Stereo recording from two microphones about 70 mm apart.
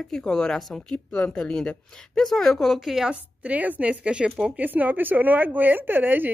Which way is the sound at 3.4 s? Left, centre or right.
Right.